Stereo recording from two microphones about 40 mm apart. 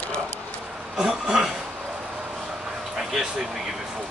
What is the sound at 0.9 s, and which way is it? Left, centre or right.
Speech, centre.